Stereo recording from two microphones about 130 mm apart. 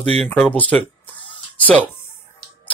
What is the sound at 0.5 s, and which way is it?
Speech, 10° left (ahead or behind).